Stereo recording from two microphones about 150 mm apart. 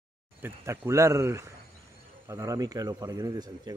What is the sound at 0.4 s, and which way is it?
Speech, 20° right (ahead or behind).